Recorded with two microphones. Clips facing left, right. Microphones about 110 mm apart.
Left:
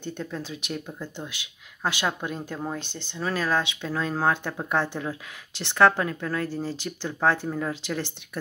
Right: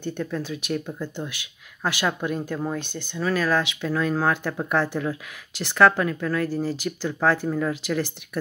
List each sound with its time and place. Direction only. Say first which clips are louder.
0.2 s speech: right 5 dB; 20° left (ahead or behind)